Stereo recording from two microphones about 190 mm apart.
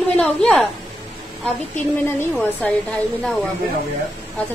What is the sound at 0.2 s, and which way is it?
Speech, 5° left (ahead or behind).